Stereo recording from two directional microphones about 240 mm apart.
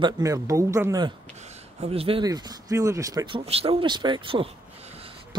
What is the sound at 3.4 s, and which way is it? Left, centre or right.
Speech, right.